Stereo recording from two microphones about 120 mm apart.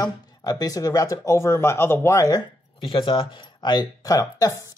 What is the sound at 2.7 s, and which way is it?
Speech, 50° left (ahead or behind).